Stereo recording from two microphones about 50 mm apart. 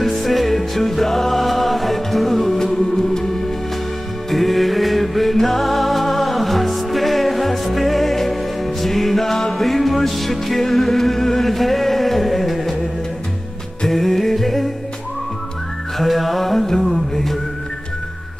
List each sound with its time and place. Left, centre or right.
0.0 s music: centre
4.3 s music: centre
13.8 s music: centre
16.0 s music: centre